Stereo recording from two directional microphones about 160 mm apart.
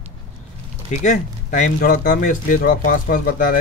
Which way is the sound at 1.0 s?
50° left (ahead or behind).